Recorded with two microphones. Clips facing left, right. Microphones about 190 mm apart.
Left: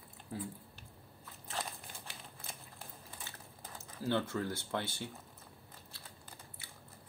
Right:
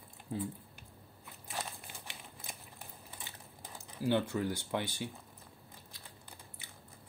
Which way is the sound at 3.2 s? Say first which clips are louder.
Even; 15° right (ahead or behind).